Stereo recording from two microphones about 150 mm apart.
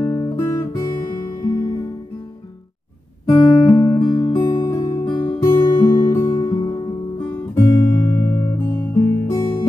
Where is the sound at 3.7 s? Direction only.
20° left (ahead or behind).